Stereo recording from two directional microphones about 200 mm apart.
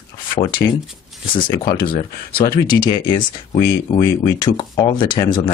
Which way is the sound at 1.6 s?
45° left (ahead or behind).